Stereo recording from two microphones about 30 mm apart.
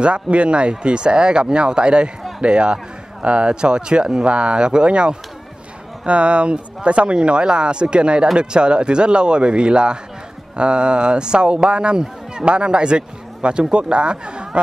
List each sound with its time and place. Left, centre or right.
0.0 s speech: right
6.0 s speech: right